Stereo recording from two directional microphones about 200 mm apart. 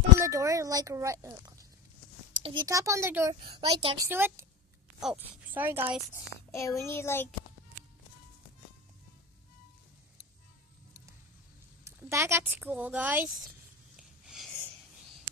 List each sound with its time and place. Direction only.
0.2 s a woman's voice: 15° right (ahead or behind)
3.4 s a woman's voice: 25° right (ahead or behind); by 5.9 s 10° right (ahead or behind)
6.1 s a child's voice: 15° left (ahead or behind)
11.8 s speech: 15° right (ahead or behind)
13.9 s snort: centre (ahead or behind)